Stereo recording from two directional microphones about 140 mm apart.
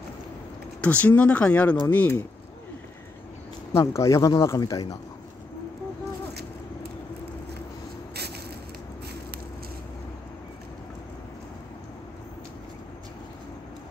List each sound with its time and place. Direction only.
0.7 s speech: 10° left (ahead or behind)
3.7 s speech: 20° left (ahead or behind)